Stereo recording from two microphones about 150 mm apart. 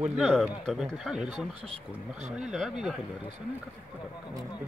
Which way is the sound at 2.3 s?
Centre (ahead or behind).